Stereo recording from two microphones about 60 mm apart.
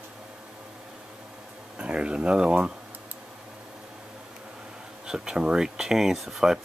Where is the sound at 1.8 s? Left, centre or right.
Centre.